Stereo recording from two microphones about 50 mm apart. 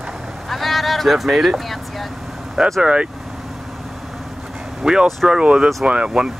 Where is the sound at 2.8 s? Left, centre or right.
Right.